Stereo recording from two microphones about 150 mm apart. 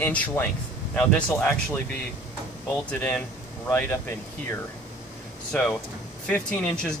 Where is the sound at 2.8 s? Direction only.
10° left (ahead or behind).